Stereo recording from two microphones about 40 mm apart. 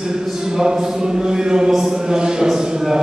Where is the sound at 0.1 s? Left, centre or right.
Centre.